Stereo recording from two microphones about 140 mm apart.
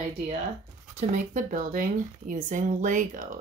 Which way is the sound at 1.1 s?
70° right (ahead or behind).